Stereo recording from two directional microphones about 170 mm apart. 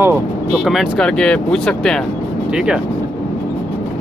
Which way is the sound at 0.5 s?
Centre (ahead or behind).